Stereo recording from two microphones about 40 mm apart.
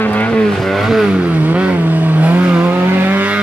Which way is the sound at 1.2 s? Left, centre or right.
Right.